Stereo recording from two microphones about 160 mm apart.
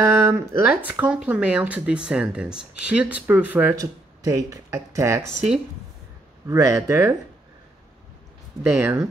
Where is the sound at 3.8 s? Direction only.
20° right (ahead or behind).